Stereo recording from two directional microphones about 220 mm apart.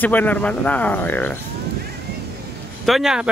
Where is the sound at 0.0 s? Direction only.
10° left (ahead or behind).